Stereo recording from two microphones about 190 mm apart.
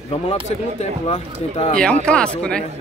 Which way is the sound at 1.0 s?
30° left (ahead or behind).